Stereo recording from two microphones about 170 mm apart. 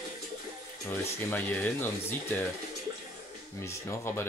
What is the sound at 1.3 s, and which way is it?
Speech, 10° left (ahead or behind).